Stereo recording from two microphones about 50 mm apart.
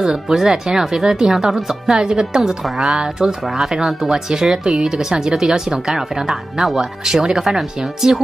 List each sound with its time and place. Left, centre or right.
0.0 s speech: centre